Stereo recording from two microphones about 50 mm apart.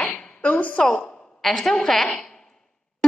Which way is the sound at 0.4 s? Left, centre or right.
Left.